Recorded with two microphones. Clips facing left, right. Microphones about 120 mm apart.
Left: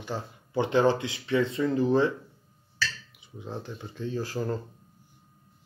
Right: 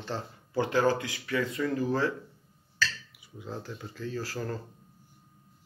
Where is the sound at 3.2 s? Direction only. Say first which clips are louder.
Left 2 dB; 20° left (ahead or behind).